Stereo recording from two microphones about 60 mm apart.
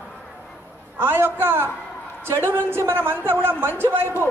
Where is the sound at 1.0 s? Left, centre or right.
Right.